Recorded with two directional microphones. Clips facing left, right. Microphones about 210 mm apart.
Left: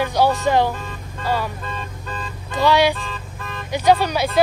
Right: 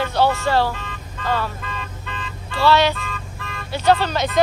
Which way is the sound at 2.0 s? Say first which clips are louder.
Left 2 dB; 35° left (ahead or behind).